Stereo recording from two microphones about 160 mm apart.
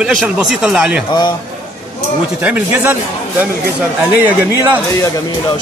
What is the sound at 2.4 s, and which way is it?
Speech, 10° right (ahead or behind).